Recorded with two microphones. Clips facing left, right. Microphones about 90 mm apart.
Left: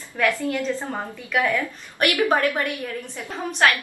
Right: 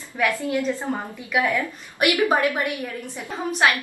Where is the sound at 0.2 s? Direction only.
15° right (ahead or behind).